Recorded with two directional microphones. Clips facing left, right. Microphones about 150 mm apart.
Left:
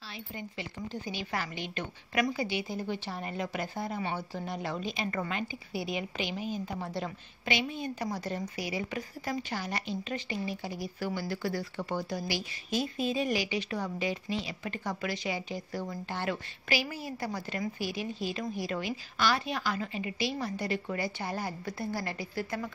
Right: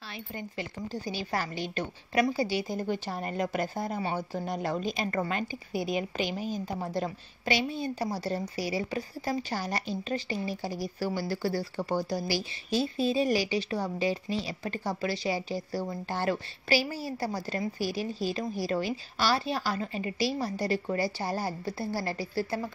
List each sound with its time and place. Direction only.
0.6 s a woman's voice: 35° right (ahead or behind)